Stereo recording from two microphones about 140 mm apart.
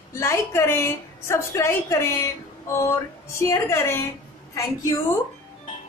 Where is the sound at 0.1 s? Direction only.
20° left (ahead or behind).